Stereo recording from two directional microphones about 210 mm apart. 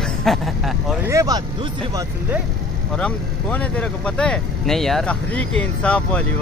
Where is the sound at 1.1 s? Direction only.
15° right (ahead or behind).